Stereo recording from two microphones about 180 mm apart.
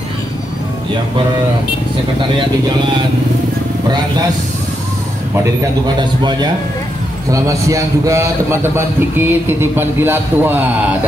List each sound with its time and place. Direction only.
2.3 s speech: 25° right (ahead or behind)
7.2 s a man's voice: 20° right (ahead or behind)